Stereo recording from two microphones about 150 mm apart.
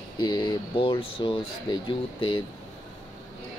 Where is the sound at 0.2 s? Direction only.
30° left (ahead or behind).